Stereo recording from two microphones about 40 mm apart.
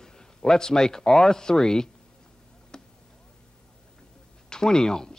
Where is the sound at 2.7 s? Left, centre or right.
Centre.